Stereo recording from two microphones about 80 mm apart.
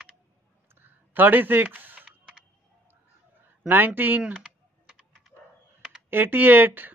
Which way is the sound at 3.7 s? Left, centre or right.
Right.